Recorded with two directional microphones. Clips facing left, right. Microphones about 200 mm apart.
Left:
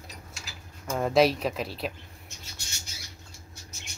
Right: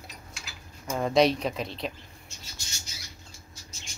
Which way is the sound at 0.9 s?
5° left (ahead or behind).